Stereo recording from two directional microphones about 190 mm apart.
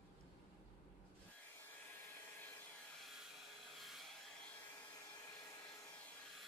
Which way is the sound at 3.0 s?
Centre (ahead or behind).